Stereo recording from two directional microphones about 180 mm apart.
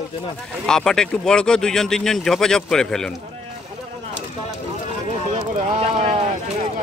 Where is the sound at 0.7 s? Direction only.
5° left (ahead or behind).